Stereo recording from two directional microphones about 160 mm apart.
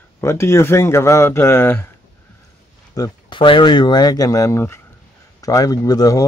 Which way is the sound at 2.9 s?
25° left (ahead or behind).